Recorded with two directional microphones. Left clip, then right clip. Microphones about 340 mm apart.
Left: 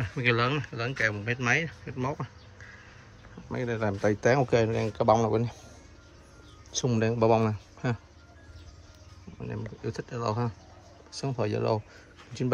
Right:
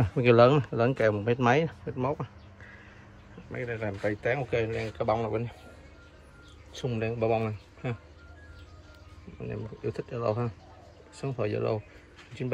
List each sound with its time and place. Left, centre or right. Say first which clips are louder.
0.0 s speech: right 6 dB; centre
2.0 s speech: right 2 dB; centre
3.6 s speech: left 4 dB; left
4.4 s speech: left 5 dB; centre
6.7 s speech: left 4 dB; centre
9.4 s speech: right 2 dB; centre